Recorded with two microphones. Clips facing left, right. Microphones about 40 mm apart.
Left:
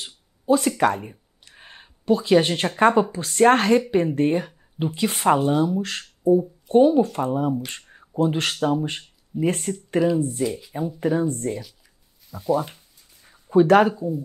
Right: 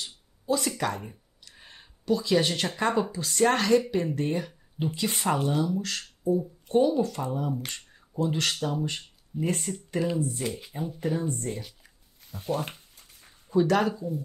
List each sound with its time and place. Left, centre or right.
0.0 s a sound: left
0.7 s speech: left
12.3 s speech: left
13.3 s speech: left